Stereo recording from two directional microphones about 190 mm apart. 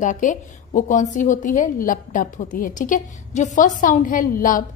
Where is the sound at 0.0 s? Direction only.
40° left (ahead or behind).